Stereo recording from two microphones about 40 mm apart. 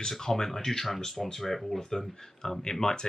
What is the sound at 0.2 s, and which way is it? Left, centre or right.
Speech, centre.